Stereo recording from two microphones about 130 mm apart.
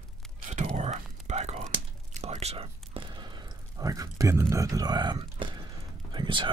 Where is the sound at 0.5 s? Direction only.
60° right (ahead or behind); by 3.0 s 45° right (ahead or behind).